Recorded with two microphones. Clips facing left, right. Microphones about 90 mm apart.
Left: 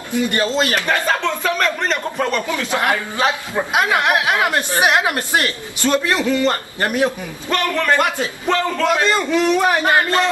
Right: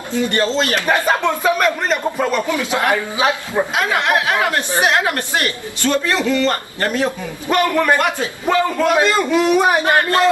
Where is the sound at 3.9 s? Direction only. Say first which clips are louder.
Even; 15° left (ahead or behind).